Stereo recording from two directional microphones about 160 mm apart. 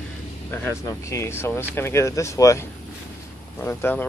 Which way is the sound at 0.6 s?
15° left (ahead or behind).